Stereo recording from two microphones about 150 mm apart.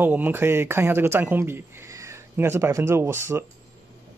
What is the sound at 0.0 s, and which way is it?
Speech, 15° right (ahead or behind).